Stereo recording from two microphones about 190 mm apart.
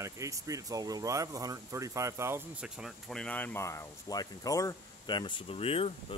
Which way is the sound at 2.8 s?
5° left (ahead or behind).